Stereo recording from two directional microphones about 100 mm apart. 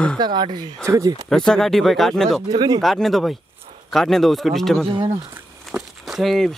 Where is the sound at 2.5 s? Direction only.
45° right (ahead or behind).